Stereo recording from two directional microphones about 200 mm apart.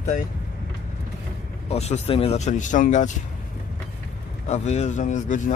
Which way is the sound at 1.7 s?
30° left (ahead or behind).